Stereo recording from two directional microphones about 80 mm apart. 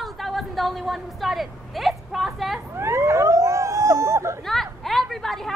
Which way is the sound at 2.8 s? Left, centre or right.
Right.